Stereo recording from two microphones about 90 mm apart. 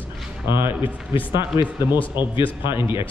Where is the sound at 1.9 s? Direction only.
60° left (ahead or behind).